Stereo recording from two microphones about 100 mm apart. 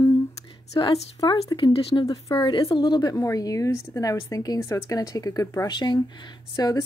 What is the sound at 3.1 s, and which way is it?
Speech, 35° left (ahead or behind).